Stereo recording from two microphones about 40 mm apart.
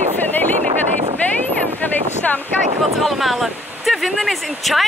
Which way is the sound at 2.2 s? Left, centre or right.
Left.